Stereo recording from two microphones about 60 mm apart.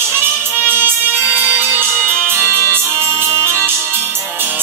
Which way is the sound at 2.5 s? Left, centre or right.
Left.